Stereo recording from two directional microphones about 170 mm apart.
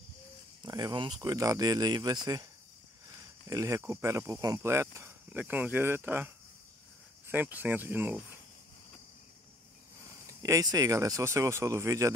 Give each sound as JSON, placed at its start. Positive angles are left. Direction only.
{"t": 0.6, "sound": "speech", "side_deg": -20}
{"t": 3.4, "sound": "speech", "side_deg": -20}
{"t": 10.4, "sound": "speech", "side_deg": -20}